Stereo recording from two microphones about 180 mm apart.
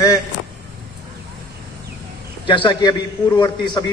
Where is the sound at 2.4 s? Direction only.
25° left (ahead or behind).